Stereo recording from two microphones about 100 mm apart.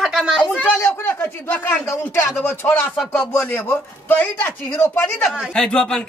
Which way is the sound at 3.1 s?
15° left (ahead or behind).